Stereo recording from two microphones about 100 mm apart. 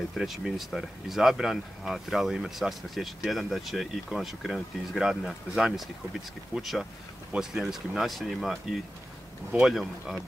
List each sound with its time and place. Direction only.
0.1 s speech: centre (ahead or behind)